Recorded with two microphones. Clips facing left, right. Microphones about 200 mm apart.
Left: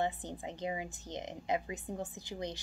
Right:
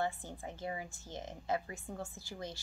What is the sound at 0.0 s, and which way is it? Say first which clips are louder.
Speech: left 2 dB; 20° left (ahead or behind).